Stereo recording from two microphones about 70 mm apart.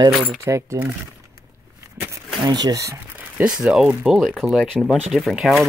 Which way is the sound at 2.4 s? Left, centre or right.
Right.